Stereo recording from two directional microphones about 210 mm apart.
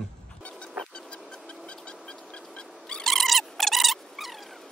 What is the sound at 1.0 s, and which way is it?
Music, 5° left (ahead or behind).